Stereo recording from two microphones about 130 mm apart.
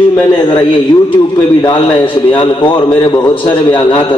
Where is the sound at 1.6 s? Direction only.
40° left (ahead or behind).